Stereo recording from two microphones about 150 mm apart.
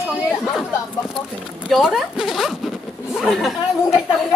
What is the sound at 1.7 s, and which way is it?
Speech, 5° right (ahead or behind).